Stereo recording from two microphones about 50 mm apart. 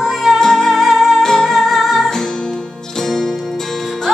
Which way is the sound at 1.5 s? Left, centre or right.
Centre.